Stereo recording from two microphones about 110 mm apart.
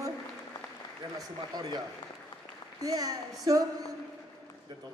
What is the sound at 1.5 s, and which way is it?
Speech, 40° right (ahead or behind).